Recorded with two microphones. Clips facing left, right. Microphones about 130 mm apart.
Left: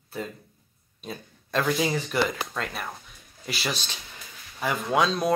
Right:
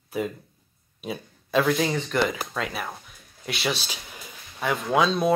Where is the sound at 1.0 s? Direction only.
5° right (ahead or behind).